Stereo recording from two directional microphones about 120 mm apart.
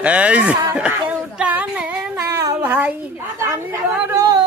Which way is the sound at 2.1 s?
25° right (ahead or behind).